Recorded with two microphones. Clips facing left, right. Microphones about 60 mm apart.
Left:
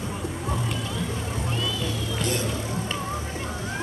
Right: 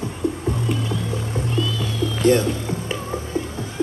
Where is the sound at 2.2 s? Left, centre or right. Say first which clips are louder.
Right 12 dB; right.